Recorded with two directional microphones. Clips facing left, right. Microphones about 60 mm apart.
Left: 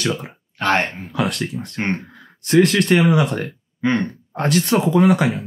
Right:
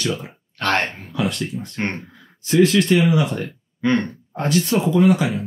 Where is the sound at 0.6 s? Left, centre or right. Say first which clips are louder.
Left 2 dB; centre.